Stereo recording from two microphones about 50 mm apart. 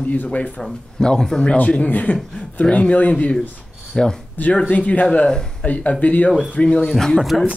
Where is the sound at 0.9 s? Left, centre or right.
Centre.